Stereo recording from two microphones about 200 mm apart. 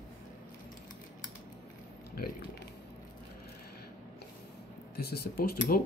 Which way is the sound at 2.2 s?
45° left (ahead or behind).